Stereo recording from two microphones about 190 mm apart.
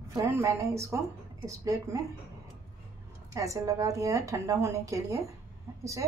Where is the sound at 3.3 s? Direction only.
15° right (ahead or behind).